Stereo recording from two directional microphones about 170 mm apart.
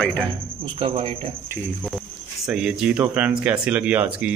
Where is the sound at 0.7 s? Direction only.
30° right (ahead or behind).